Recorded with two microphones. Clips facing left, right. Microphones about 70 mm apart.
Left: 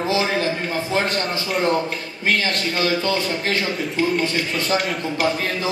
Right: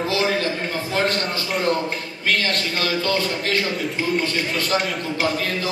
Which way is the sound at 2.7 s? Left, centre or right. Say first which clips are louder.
Left 2 dB; left.